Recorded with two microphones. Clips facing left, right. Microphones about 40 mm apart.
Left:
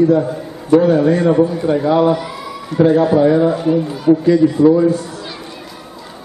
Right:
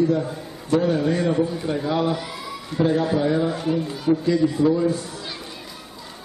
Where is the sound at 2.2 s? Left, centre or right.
Centre.